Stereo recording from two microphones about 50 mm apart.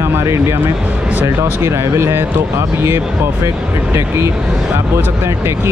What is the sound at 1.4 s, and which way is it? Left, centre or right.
Speech, right.